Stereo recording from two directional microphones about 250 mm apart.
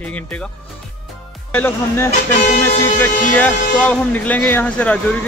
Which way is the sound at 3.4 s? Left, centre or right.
Centre.